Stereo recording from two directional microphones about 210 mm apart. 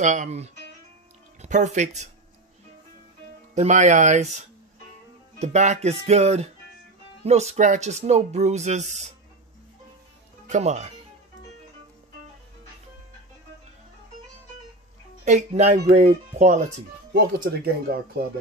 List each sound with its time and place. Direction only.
0.0 s speech: 35° right (ahead or behind)
3.5 s speech: 35° right (ahead or behind)
10.4 s speech: 35° right (ahead or behind)
15.2 s speech: 35° right (ahead or behind)
17.1 s speech: 50° right (ahead or behind)